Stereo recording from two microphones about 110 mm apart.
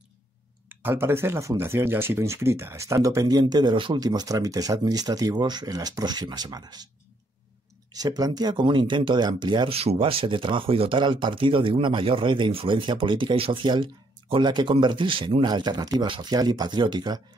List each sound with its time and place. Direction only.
0.7 s speech: 20° right (ahead or behind); by 6.9 s 40° right (ahead or behind)
7.9 s speech: 35° right (ahead or behind)
9.7 s speech: 60° right (ahead or behind); by 17.2 s 40° right (ahead or behind)